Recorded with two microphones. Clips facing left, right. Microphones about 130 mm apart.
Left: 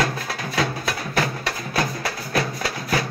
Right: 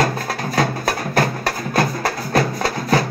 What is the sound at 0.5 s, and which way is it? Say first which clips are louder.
Music: right 4 dB; 45° right (ahead or behind).